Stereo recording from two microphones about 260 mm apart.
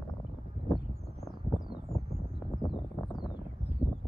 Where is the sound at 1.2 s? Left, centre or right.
Centre.